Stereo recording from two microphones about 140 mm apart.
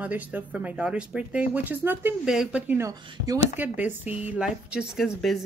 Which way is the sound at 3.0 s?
25° right (ahead or behind).